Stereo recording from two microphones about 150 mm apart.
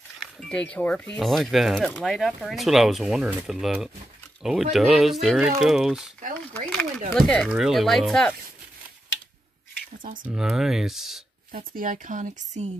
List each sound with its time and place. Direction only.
0.2 s speech: 5° left (ahead or behind)
1.9 s speech: 10° left (ahead or behind)
2.1 s speech: centre (ahead or behind)
6.5 s a sound: 10° left (ahead or behind)
7.2 s speech: 5° left (ahead or behind)
10.2 s speech: 5° right (ahead or behind)
11.7 s speech: 65° right (ahead or behind)